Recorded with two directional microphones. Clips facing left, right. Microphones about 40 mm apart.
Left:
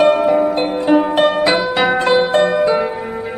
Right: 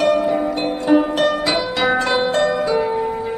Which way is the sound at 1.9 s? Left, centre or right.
Centre.